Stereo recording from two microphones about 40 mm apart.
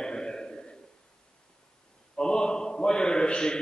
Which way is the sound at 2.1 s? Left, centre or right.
Centre.